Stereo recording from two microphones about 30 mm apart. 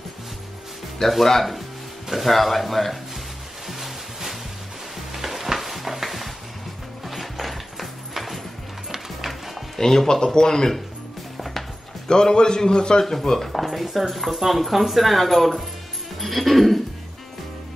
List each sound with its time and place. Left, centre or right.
1.0 s speech: centre
3.6 s music: centre
7.1 s horse: centre
9.2 s music: centre
9.8 s speech: centre
11.3 s a sound: centre
12.1 s speech: left
13.0 s speech: centre
13.5 s speech: centre
16.2 s a sound: centre